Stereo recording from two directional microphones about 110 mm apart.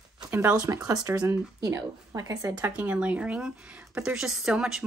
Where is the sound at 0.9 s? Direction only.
30° right (ahead or behind).